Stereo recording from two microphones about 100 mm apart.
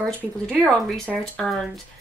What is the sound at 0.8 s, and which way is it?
Speech, centre (ahead or behind).